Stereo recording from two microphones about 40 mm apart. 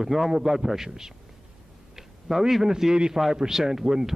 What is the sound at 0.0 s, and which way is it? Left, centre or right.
A man's voice, centre.